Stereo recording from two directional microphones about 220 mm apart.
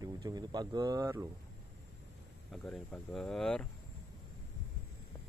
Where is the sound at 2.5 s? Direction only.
5° left (ahead or behind).